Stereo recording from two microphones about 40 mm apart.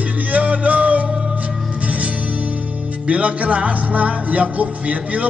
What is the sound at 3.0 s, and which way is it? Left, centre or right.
Music, right.